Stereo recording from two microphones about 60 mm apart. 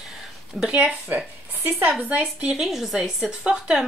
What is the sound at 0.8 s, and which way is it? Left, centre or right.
Speech, right.